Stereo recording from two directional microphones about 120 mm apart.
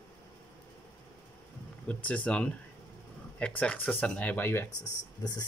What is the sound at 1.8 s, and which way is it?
Speech, 10° left (ahead or behind).